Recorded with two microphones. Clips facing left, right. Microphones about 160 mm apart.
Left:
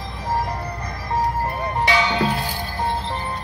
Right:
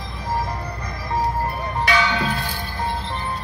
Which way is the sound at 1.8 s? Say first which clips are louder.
Left 1 dB; 25° left (ahead or behind).